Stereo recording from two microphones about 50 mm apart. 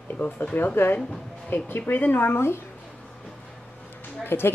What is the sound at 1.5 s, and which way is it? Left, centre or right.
A woman's voice, left.